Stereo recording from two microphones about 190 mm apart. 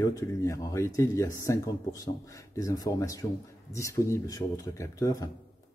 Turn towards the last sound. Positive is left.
turn(degrees=15)  # may be behind; listen again after turning